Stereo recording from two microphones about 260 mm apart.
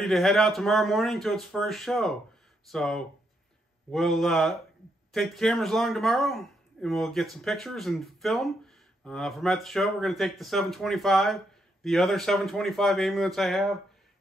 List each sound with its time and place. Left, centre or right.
0.0 s speech: centre